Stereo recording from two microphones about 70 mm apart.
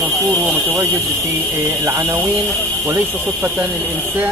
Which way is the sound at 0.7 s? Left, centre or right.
Right.